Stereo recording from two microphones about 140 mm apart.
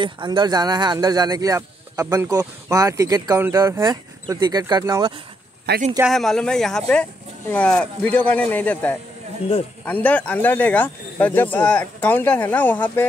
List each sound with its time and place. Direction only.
0.0 s speech: 35° right (ahead or behind)
6.0 s speech: centre (ahead or behind)